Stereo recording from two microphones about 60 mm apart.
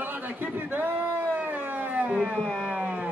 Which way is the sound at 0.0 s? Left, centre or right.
Right.